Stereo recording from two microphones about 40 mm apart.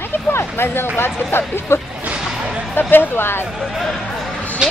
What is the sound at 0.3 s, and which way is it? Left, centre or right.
Speech, left.